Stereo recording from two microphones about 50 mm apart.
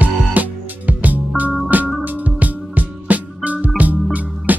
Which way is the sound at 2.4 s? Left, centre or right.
Right.